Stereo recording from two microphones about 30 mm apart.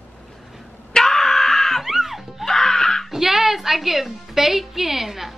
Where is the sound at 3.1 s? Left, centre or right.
Centre.